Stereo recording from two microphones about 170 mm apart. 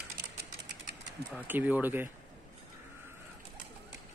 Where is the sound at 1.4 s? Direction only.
10° right (ahead or behind).